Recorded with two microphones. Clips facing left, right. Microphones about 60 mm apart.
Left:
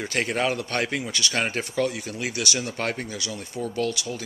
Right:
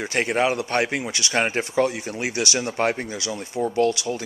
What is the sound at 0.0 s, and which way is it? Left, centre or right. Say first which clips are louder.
Speech: right 3 dB; centre.